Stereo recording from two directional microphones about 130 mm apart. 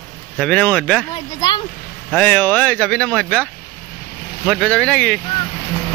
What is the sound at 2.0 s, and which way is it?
Speech, 10° left (ahead or behind).